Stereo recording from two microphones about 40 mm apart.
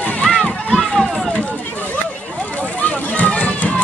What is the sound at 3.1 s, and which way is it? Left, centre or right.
Run, left.